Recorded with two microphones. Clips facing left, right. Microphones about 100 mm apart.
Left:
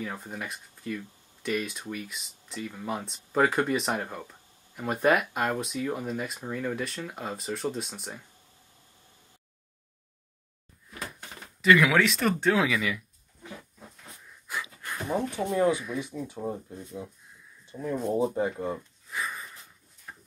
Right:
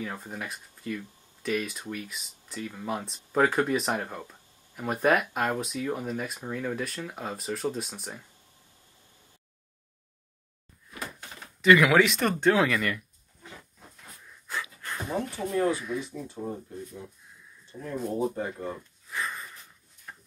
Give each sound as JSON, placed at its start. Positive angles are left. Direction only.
{"t": 0.0, "sound": "speech", "side_deg": 0}
{"t": 11.6, "sound": "speech", "side_deg": 0}
{"t": 14.5, "sound": "a sound", "side_deg": 10}
{"t": 16.0, "sound": "speech", "side_deg": 15}
{"t": 19.0, "sound": "sniff", "side_deg": 10}
{"t": 20.1, "sound": "a sound", "side_deg": 10}